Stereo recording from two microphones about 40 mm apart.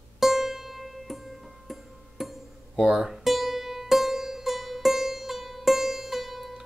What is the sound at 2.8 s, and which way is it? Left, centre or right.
Speech, centre.